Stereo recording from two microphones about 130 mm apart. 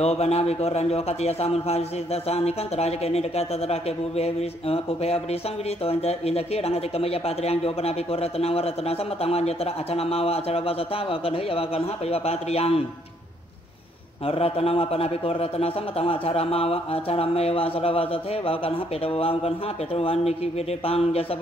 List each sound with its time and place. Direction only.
0.0 s a man's voice: 55° left (ahead or behind)
14.2 s a man's voice: 50° left (ahead or behind)